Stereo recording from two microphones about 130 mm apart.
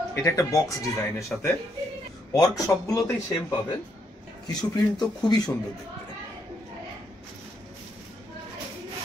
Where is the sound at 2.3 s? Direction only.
25° left (ahead or behind).